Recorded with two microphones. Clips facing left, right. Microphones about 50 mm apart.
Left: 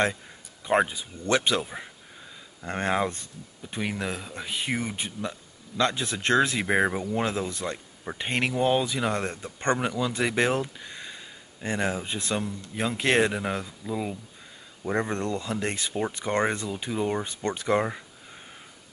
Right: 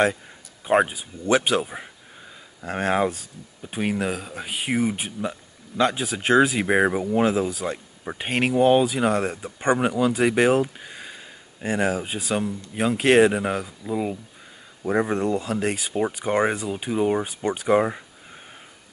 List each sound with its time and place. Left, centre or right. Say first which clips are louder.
0.6 s a sound: right 4 dB; centre
1.2 s speech: right 4 dB; centre
3.6 s speech: right 5 dB; centre
9.1 s speech: right 5 dB; centre